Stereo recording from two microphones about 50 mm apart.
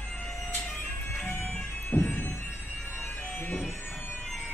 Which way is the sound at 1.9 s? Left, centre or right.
Left.